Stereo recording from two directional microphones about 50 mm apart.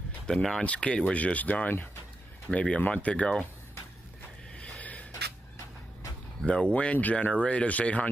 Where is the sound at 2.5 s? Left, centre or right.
Left.